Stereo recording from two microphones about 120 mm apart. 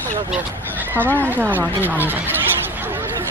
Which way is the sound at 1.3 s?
15° right (ahead or behind).